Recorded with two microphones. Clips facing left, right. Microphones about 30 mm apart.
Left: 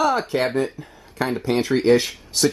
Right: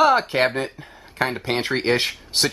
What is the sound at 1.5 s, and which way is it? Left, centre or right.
Speech, right.